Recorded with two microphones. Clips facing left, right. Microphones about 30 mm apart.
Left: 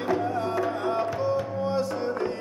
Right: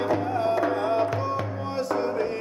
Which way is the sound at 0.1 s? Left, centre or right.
Centre.